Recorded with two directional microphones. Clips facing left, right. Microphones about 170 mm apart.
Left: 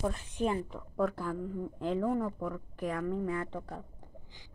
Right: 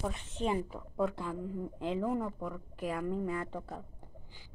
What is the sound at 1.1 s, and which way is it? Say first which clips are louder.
A woman's voice: left 2 dB; centre (ahead or behind).